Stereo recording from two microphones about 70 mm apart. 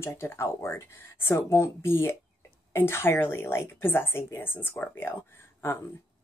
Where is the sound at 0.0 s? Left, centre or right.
Left.